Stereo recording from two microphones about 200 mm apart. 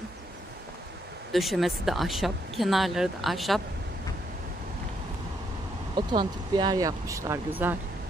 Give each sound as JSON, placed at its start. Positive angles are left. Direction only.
{"t": 1.3, "sound": "speech", "side_deg": 0}
{"t": 5.9, "sound": "speech", "side_deg": -20}